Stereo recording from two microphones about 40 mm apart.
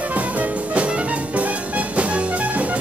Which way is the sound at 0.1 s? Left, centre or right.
Right.